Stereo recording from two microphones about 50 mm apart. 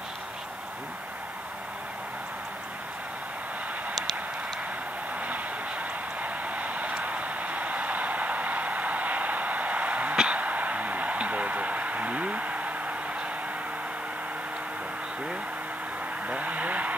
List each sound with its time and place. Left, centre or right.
5.2 s vehicle: right
10.1 s a sound: right
16.3 s vehicle: right